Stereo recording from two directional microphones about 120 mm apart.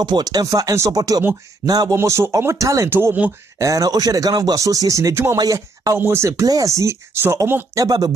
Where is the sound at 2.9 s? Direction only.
15° right (ahead or behind).